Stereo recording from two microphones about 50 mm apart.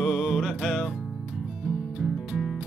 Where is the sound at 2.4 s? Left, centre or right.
Centre.